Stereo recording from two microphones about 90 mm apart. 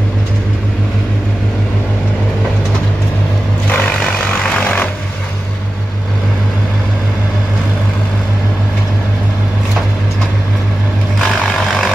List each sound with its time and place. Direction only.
3.7 s vehicle: 20° left (ahead or behind)
11.1 s vehicle: centre (ahead or behind)